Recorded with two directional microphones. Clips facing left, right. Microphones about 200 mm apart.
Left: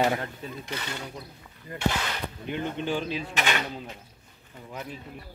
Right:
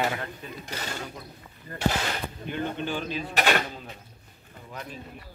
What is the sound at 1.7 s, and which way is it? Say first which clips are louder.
Speech: right 1 dB; 15° left (ahead or behind).